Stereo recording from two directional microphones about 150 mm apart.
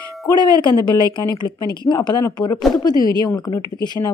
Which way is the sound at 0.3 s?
30° left (ahead or behind).